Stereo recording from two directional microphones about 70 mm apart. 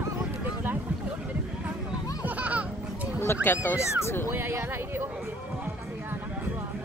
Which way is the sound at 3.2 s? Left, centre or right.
Left.